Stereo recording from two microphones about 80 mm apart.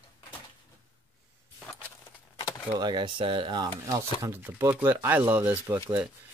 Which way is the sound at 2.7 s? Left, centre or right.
Right.